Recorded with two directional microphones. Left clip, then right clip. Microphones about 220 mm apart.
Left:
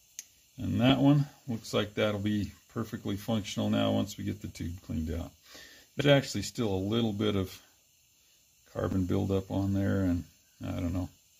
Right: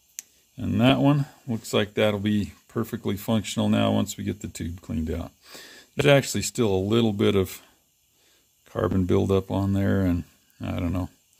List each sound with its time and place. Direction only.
0.1 s speech: 45° right (ahead or behind)
8.6 s speech: 55° right (ahead or behind)